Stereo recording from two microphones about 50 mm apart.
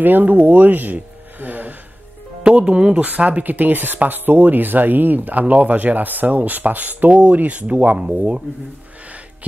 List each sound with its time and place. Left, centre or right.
0.0 s speech: right
2.5 s speech: right